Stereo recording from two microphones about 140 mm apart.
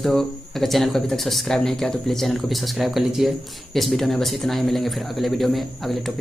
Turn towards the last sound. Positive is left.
turn(degrees=0)  # may be behind; listen again after turning